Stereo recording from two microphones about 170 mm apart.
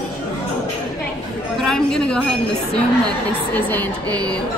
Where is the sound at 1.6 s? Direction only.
5° left (ahead or behind).